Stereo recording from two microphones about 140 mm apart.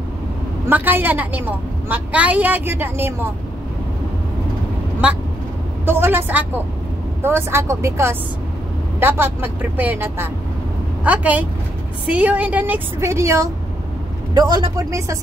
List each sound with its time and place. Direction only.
0.7 s a woman's voice: 15° right (ahead or behind)
5.0 s a woman's voice: 10° right (ahead or behind)